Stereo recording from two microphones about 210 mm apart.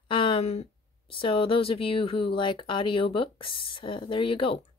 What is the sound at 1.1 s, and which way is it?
Speech, 25° left (ahead or behind).